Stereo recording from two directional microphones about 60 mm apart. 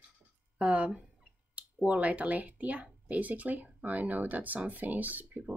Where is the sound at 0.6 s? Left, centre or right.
Right.